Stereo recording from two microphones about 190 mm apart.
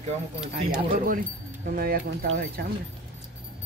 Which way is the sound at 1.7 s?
50° right (ahead or behind).